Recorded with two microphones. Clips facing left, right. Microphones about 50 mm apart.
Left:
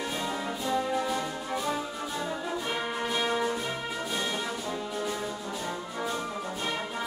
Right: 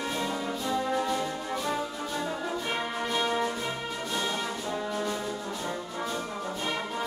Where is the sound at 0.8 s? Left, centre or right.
Centre.